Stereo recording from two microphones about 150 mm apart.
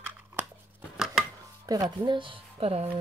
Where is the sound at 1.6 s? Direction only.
25° right (ahead or behind).